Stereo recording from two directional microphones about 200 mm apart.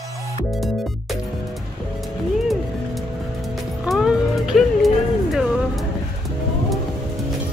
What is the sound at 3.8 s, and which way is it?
Music, 5° right (ahead or behind).